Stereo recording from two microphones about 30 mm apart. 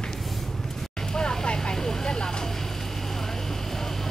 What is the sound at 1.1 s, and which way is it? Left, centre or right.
Vehicle, left.